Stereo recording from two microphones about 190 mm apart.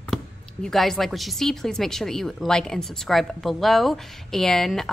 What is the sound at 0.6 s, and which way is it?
Speech, centre (ahead or behind).